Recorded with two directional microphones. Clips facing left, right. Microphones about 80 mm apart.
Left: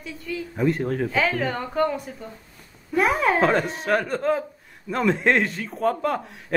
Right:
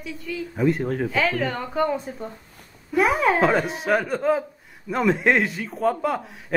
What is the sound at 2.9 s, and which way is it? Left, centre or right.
Speech, centre.